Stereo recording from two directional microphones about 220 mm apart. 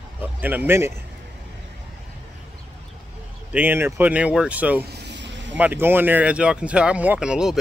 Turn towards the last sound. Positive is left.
turn(degrees=-5)  # may be behind; listen again after turning